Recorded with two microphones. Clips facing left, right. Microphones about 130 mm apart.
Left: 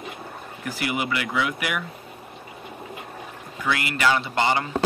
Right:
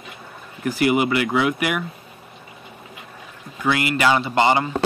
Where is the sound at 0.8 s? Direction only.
25° right (ahead or behind).